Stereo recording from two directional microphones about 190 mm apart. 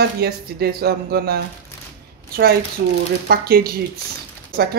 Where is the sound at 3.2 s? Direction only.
50° right (ahead or behind).